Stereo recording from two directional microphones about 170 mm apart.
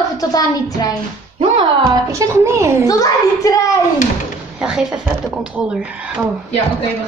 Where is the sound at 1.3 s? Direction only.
30° right (ahead or behind).